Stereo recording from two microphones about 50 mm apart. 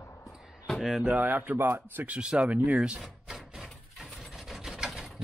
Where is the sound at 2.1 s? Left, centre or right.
Right.